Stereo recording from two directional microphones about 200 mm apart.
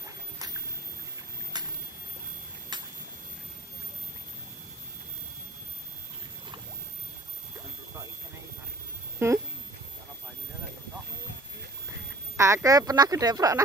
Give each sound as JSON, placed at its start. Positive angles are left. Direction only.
{"t": 1.5, "sound": "boat", "side_deg": -20}
{"t": 2.7, "sound": "a sound", "side_deg": -20}
{"t": 9.2, "sound": "speech", "side_deg": -15}
{"t": 12.4, "sound": "speech", "side_deg": -15}